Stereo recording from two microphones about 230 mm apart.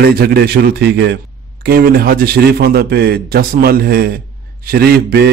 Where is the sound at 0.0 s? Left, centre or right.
Right.